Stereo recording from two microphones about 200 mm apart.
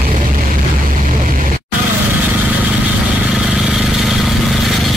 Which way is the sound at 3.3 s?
5° right (ahead or behind).